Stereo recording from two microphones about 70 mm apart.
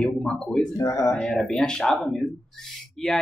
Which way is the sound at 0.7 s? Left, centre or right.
Left.